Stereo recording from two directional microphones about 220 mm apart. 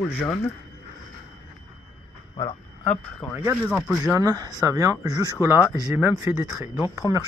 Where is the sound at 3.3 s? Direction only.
5° right (ahead or behind).